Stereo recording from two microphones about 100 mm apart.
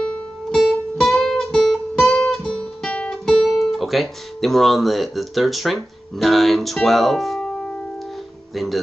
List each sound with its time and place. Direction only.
0.5 s music: centre (ahead or behind)
8.5 s speech: centre (ahead or behind)